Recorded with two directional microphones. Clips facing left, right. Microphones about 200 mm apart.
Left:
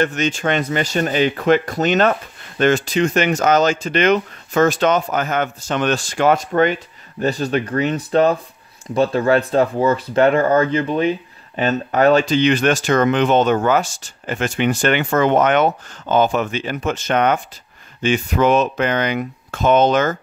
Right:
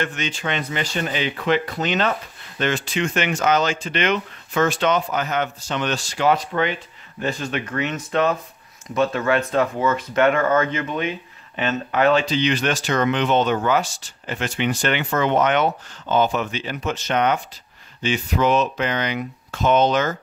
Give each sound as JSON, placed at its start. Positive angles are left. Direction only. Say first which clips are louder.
{"t": 0.0, "sound": "speech", "louder": "left 7 dB", "side_deg": 45}